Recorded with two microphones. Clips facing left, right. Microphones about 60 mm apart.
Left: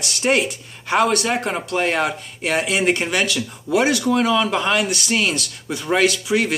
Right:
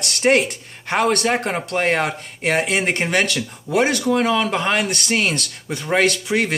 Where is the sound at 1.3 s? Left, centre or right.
Right.